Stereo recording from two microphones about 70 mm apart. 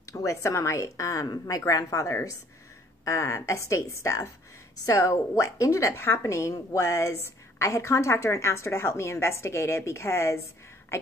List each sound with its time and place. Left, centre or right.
0.1 s a woman's voice: left